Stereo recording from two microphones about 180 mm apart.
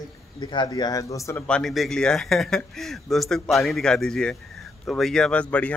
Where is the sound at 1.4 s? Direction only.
5° left (ahead or behind).